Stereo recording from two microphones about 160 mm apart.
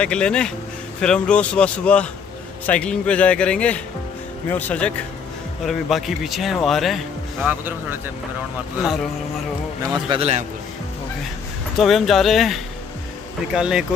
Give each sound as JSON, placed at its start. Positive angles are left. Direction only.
{"t": 0.0, "sound": "a man's voice", "side_deg": 5}
{"t": 7.4, "sound": "speech", "side_deg": -10}
{"t": 10.0, "sound": "a man's voice", "side_deg": -35}
{"t": 11.7, "sound": "a man's voice", "side_deg": 0}